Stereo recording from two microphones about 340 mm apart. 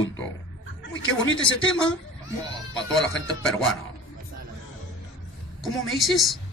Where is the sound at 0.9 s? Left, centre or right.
Left.